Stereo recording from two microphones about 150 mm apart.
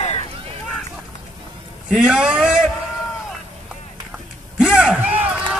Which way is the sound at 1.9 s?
5° right (ahead or behind).